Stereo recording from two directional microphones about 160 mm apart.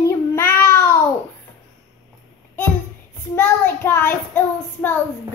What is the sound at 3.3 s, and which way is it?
Child singing, 15° left (ahead or behind).